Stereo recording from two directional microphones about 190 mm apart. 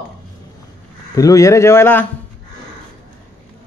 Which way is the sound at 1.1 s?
15° left (ahead or behind).